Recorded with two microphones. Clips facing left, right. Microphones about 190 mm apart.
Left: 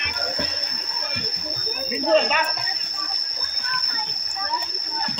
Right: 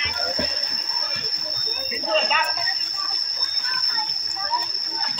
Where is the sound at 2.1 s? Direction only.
50° left (ahead or behind).